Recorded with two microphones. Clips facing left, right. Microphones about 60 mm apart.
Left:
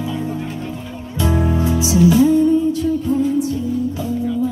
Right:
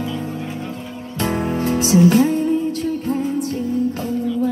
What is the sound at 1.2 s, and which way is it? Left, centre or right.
Music, right.